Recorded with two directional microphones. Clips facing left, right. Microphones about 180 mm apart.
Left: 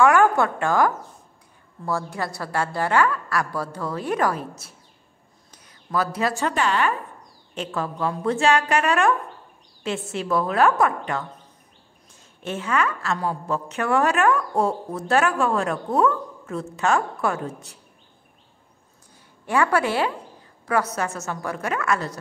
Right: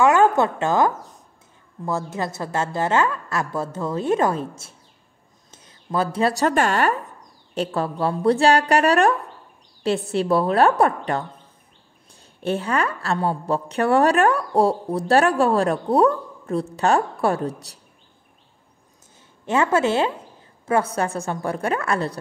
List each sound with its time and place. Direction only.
0.0 s a woman's voice: 20° right (ahead or behind)
5.5 s a sound: 25° right (ahead or behind)
6.4 s a woman's voice: 45° right (ahead or behind)
19.4 s a woman's voice: 25° right (ahead or behind)